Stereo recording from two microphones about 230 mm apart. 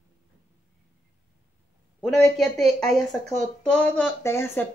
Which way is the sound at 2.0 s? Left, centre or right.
Centre.